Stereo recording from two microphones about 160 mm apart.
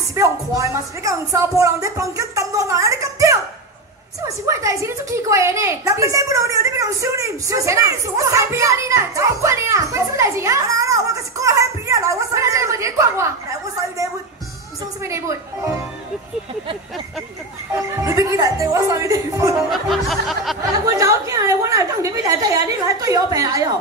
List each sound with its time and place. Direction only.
0.1 s a woman's voice: 20° right (ahead or behind)
18.0 s a woman's voice: 20° right (ahead or behind)
19.7 s music: centre (ahead or behind)
20.8 s a woman's voice: 20° right (ahead or behind)